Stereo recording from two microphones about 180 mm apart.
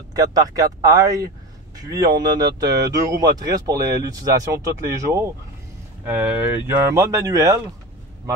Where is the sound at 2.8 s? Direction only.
20° right (ahead or behind).